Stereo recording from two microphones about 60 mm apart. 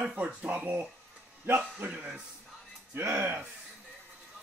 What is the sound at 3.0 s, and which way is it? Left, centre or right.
Speech, right.